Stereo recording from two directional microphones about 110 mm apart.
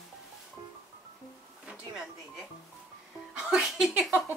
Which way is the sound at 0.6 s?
45° right (ahead or behind).